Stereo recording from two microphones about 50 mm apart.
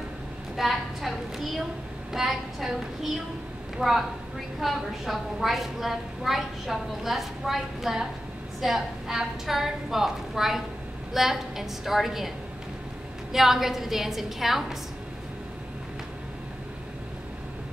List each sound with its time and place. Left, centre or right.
0.6 s a woman's voice: centre
13.3 s a woman's voice: centre